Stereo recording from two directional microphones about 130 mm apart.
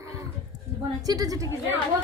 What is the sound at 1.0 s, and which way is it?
Speech, 30° right (ahead or behind).